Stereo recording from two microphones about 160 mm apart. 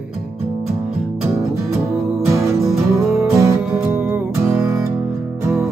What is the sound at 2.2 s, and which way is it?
Music, 20° right (ahead or behind).